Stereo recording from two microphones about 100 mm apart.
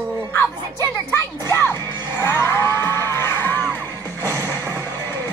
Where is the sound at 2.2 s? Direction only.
25° left (ahead or behind).